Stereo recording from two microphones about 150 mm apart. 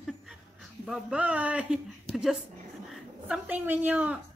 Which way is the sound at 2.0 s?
Centre (ahead or behind).